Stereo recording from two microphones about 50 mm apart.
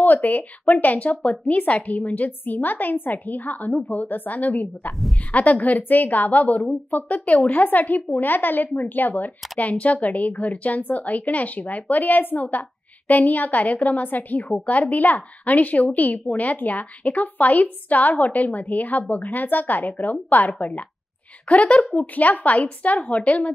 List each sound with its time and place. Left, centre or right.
0.0 s a woman's voice: left
1.2 s speech: centre
1.6 s a woman's voice: left